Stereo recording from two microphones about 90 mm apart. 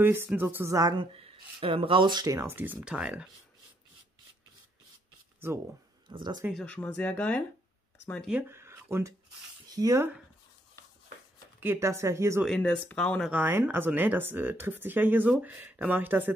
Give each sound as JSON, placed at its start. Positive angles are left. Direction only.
{"t": 0.0, "sound": "speech", "side_deg": -25}
{"t": 0.9, "sound": "speech", "side_deg": -90}
{"t": 2.3, "sound": "speech", "side_deg": -25}
{"t": 2.9, "sound": "speech", "side_deg": -10}
{"t": 6.0, "sound": "speech", "side_deg": -55}
{"t": 6.6, "sound": "speech", "side_deg": 15}
{"t": 8.3, "sound": "speech", "side_deg": -20}
{"t": 8.5, "sound": "a sound", "side_deg": -25}
{"t": 9.7, "sound": "a sound", "side_deg": -45}
{"t": 11.6, "sound": "speech", "side_deg": -30}
{"t": 12.4, "sound": "speech", "side_deg": 10}
{"t": 13.3, "sound": "speech", "side_deg": -25}